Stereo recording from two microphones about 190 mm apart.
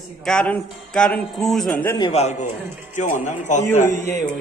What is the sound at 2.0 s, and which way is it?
A man's voice, 30° left (ahead or behind).